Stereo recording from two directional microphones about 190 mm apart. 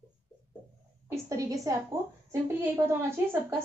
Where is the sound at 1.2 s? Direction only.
15° right (ahead or behind).